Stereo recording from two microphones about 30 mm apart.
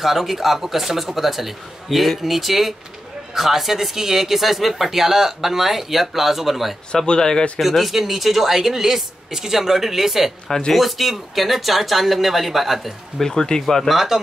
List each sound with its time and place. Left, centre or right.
0.0 s speech: centre
7.2 s speech: left
7.6 s speech: centre
13.2 s speech: centre
13.8 s speech: centre